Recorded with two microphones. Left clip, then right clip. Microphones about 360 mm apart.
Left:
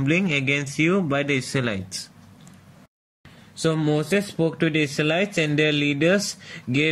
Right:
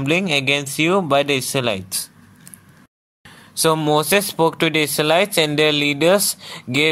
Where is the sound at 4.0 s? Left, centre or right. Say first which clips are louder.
Right 7 dB; centre.